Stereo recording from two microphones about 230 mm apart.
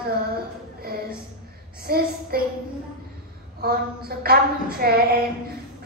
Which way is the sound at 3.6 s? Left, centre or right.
Right.